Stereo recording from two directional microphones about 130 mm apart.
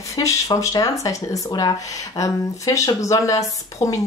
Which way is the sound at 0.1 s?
25° left (ahead or behind).